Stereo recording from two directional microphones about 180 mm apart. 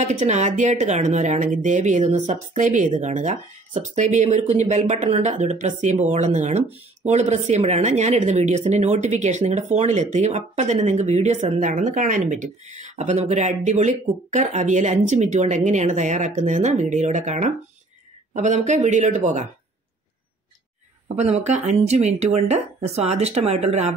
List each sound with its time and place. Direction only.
0.0 s speech: 40° right (ahead or behind)
21.2 s speech: 40° right (ahead or behind)